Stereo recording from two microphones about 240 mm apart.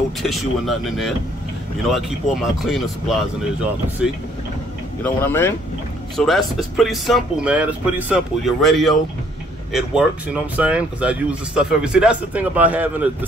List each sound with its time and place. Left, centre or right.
0.2 s speech: centre
5.0 s speech: centre